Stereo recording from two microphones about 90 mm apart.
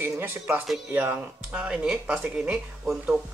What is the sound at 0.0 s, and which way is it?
Speech, 20° right (ahead or behind).